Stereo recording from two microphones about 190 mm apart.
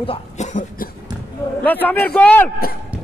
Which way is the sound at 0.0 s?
35° left (ahead or behind).